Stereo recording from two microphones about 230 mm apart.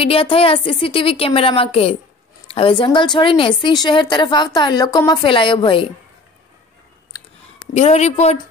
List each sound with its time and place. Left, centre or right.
0.0 s a woman's voice: left
7.7 s a woman's voice: left